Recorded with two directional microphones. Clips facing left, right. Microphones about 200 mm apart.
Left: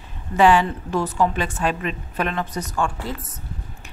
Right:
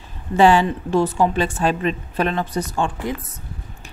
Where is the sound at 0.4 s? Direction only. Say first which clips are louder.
Right 2 dB; 30° right (ahead or behind).